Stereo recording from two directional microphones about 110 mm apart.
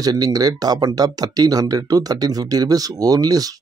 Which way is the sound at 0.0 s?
35° right (ahead or behind).